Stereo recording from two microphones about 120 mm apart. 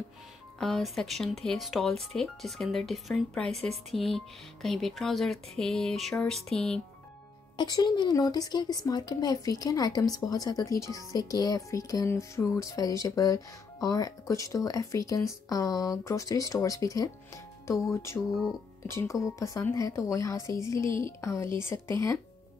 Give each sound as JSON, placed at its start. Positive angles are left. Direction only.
{"t": 0.6, "sound": "speech", "side_deg": 5}
{"t": 7.5, "sound": "speech", "side_deg": 35}